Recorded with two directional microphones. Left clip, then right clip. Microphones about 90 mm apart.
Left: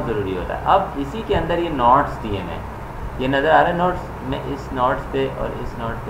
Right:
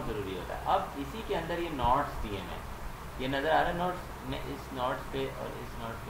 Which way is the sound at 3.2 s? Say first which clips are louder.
Left 13 dB; 25° right (ahead or behind).